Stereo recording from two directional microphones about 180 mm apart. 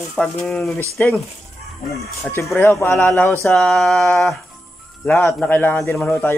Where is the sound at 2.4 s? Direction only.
10° left (ahead or behind).